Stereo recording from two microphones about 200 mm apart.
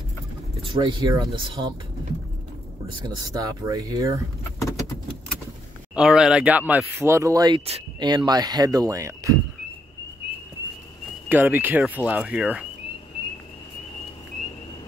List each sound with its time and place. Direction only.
0.6 s speech: 25° right (ahead or behind)
3.3 s speech: 20° right (ahead or behind)
4.6 s keys jangling: 15° left (ahead or behind)
5.9 s speech: 5° right (ahead or behind)
11.2 s speech: 10° right (ahead or behind)